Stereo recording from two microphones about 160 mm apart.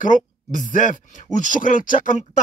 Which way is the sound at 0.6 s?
55° left (ahead or behind).